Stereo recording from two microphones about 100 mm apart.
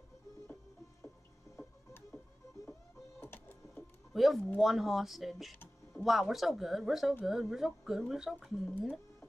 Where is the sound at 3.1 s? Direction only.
20° left (ahead or behind).